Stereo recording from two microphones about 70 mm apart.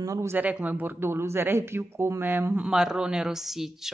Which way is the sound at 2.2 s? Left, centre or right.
Right.